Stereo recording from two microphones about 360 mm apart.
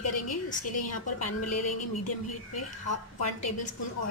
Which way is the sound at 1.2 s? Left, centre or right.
Left.